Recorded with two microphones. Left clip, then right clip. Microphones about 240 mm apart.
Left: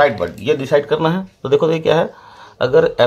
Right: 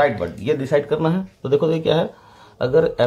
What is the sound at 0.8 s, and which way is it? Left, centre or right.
Speech, left.